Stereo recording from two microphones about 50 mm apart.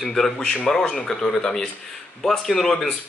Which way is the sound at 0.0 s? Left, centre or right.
Centre.